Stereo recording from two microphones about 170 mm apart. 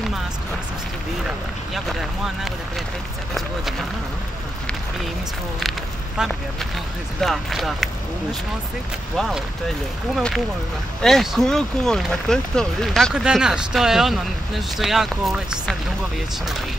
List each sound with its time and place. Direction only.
1.7 s speech: centre (ahead or behind)
5.6 s speech: centre (ahead or behind)
9.1 s speech: centre (ahead or behind)